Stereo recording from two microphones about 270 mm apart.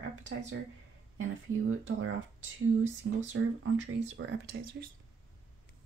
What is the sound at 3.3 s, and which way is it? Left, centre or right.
Speech, right.